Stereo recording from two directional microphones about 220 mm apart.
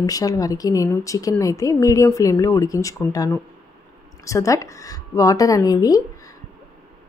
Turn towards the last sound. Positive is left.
turn(degrees=15)  # may be behind; listen again after turning